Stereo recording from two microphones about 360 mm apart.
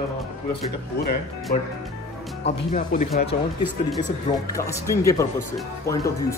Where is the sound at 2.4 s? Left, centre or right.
Left.